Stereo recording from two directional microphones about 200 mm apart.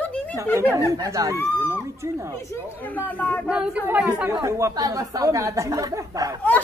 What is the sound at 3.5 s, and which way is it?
Speech, 5° right (ahead or behind).